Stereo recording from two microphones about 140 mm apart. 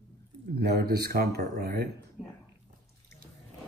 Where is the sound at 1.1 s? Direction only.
90° right.